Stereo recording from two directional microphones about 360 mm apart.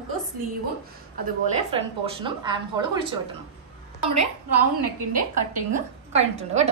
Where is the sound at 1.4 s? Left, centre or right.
Centre.